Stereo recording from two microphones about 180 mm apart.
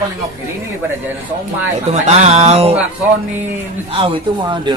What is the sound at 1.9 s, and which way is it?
Speech, 35° right (ahead or behind).